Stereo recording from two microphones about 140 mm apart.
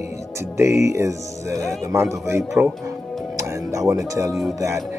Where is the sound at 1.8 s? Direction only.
20° right (ahead or behind).